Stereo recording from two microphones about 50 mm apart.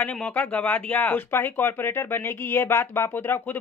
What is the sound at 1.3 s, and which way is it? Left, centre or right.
Speech, left.